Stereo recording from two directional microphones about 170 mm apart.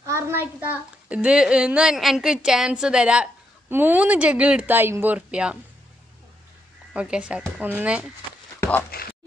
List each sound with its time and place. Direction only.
0.0 s speech: 15° right (ahead or behind)
6.9 s speech: 5° right (ahead or behind)
8.9 s speech: 65° left (ahead or behind)